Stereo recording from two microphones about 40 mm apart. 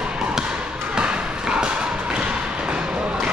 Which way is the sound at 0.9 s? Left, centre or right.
Right.